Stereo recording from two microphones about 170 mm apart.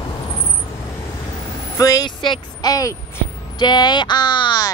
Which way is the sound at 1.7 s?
20° left (ahead or behind).